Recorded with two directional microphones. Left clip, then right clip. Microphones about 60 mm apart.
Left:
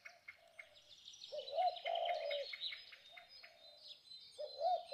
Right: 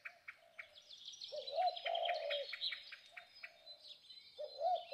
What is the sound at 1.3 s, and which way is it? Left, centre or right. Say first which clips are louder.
Bird: even; centre.